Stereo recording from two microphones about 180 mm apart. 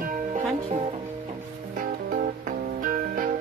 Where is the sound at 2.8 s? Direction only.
50° right (ahead or behind).